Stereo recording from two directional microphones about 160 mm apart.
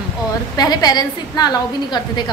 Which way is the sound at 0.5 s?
25° left (ahead or behind).